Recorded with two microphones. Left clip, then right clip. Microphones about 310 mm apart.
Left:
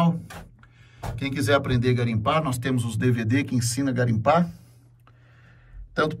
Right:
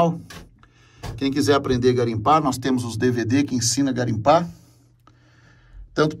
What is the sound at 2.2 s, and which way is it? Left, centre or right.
Speech, centre.